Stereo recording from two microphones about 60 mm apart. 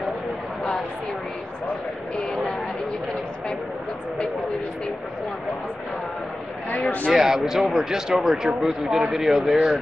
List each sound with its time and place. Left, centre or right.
6.8 s speech: left
7.1 s speech: centre